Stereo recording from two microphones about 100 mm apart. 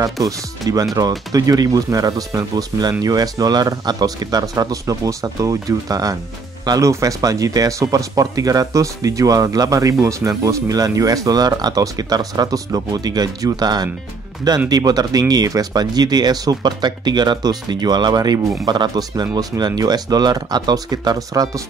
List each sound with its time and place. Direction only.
0.0 s speech: 35° right (ahead or behind)